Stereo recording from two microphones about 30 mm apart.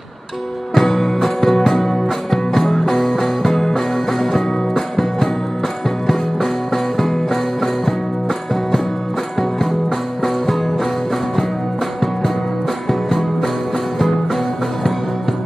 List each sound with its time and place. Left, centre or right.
0.7 s music: centre
9.4 s music: centre